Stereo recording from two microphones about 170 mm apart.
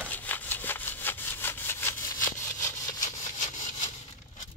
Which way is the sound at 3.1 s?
45° left (ahead or behind).